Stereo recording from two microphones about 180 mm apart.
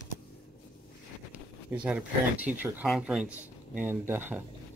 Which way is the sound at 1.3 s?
10° right (ahead or behind).